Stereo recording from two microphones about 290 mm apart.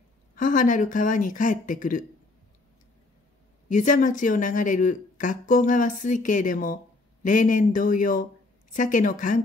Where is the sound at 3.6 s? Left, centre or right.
Left.